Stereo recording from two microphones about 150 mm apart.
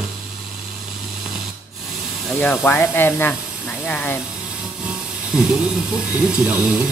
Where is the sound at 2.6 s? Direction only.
15° left (ahead or behind).